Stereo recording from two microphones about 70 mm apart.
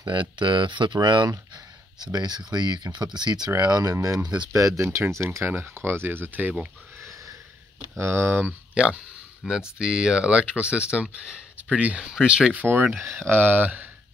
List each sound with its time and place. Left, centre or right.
0.7 s speech: right
3.6 s speech: right
4.5 s speech: right
8.0 s speech: right
8.7 s speech: centre
13.1 s speech: right